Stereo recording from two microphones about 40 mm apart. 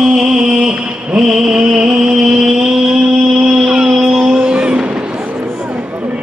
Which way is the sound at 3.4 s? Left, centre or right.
Centre.